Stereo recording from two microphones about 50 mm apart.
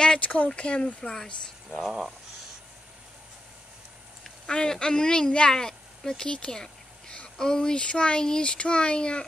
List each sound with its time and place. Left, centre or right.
0.0 s speech: left
1.8 s speech: centre
4.2 s speech: centre